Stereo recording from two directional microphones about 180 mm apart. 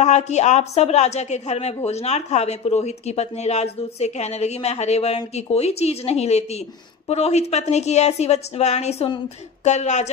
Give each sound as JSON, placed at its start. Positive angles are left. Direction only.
{"t": 0.0, "sound": "speech", "side_deg": 40}